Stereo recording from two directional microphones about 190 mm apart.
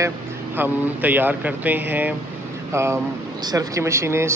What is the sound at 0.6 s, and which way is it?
Speech, 10° right (ahead or behind).